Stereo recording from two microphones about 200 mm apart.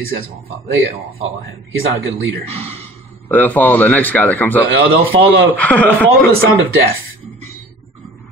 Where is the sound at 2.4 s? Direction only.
30° right (ahead or behind).